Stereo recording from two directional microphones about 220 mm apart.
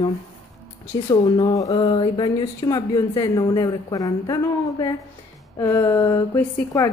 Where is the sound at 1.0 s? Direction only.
15° left (ahead or behind).